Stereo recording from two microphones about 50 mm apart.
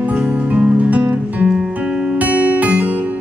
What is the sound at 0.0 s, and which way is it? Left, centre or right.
Music, right.